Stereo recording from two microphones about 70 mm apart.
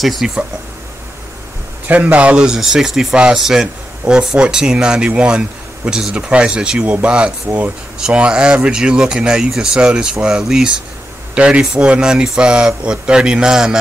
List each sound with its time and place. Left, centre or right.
0.0 s speech: centre
1.9 s speech: right